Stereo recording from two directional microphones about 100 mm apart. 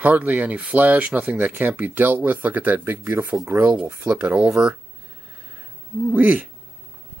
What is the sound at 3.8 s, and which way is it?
Speech, 15° right (ahead or behind).